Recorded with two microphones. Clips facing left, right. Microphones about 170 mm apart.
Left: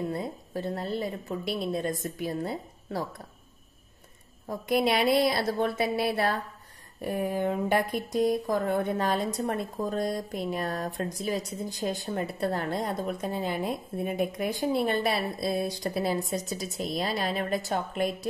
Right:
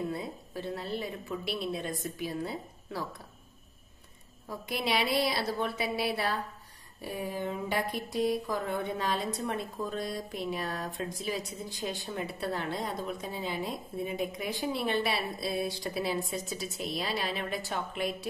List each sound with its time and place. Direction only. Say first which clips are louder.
0.1 s speech: left 4 dB; 45° left (ahead or behind)
4.6 s speech: left 7 dB; 50° left (ahead or behind)